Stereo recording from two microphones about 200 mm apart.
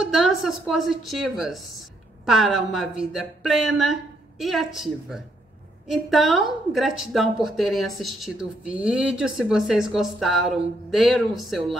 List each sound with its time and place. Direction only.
0.1 s a woman's voice: centre (ahead or behind)